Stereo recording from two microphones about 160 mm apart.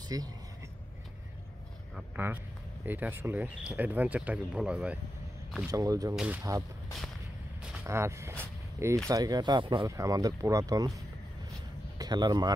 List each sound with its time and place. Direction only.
0.1 s speech: 25° right (ahead or behind)
2.0 s speech: 10° right (ahead or behind)
5.7 s speech: 20° right (ahead or behind)
6.1 s speech: 5° right (ahead or behind)
7.8 s speech: 15° right (ahead or behind)
12.0 s speech: 25° right (ahead or behind)